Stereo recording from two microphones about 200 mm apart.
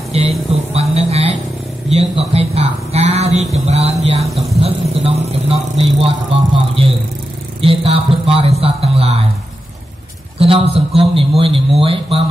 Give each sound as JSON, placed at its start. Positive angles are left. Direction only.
{"t": 0.1, "sound": "a sound", "side_deg": -30}
{"t": 1.9, "sound": "speech", "side_deg": -30}
{"t": 10.4, "sound": "speech", "side_deg": -30}